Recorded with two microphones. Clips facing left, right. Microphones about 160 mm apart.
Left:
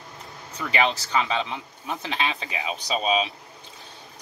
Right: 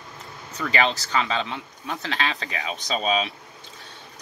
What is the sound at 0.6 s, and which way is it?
Speech, 15° left (ahead or behind).